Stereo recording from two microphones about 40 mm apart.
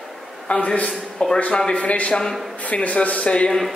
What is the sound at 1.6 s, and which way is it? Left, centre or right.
Speech, left.